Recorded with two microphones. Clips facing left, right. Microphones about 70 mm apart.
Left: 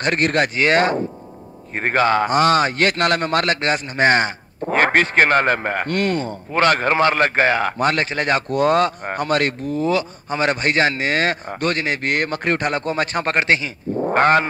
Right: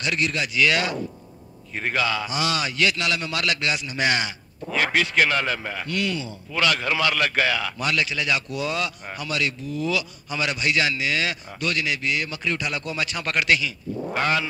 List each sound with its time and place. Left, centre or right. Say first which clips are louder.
0.0 s a man's voice: left 7 dB; left